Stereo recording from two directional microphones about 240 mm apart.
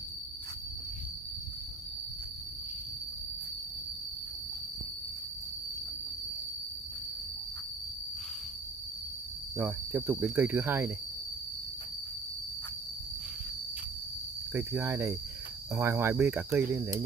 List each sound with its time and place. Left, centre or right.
9.6 s speech: centre
14.5 s speech: centre